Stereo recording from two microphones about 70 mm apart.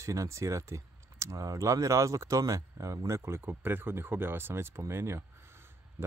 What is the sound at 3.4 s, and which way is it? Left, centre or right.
Speech, right.